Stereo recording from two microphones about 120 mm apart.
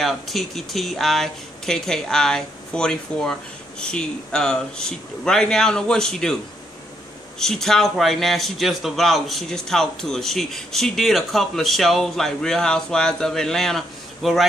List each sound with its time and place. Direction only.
0.0 s a man's voice: centre (ahead or behind)
7.3 s a man's voice: 5° left (ahead or behind)